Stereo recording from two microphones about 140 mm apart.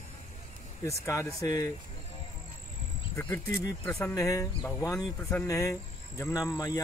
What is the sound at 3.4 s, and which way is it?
Speech, 25° left (ahead or behind).